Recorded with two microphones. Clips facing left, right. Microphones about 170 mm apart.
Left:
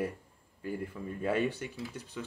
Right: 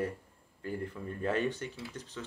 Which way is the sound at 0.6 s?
10° left (ahead or behind).